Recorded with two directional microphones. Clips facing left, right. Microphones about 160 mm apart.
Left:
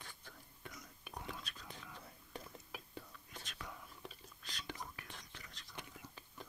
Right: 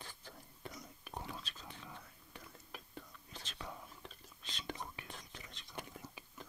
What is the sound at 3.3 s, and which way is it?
Whispering, 30° right (ahead or behind).